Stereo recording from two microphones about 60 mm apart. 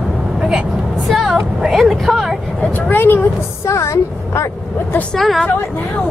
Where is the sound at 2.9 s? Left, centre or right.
Left.